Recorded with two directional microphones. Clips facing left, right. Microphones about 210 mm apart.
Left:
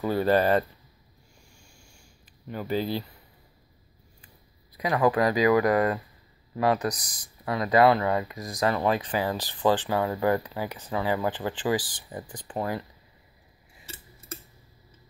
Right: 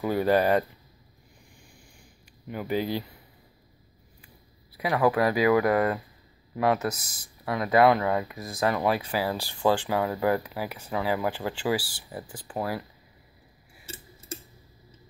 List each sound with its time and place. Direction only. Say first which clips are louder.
0.0 s speech: even; 15° right (ahead or behind)
1.5 s a sound: right 4 dB; 15° right (ahead or behind)
2.5 s speech: even; 15° right (ahead or behind)
4.7 s speech: even; 10° right (ahead or behind)
8.3 s speech: left 1 dB; 15° left (ahead or behind)
8.6 s speech: even; 10° right (ahead or behind)